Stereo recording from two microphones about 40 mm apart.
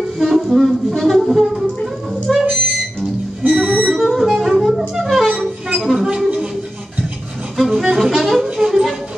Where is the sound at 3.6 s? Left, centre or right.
Right.